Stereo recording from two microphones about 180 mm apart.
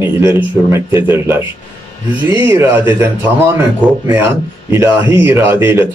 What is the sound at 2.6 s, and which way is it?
Speech, 15° right (ahead or behind).